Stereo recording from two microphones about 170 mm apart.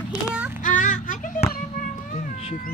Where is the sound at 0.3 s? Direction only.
10° right (ahead or behind).